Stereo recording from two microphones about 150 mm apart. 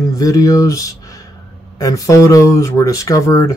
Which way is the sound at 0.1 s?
25° left (ahead or behind).